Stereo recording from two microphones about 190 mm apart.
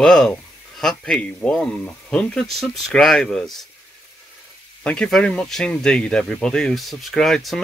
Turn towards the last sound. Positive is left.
turn(degrees=0)  # may be behind; listen again after turning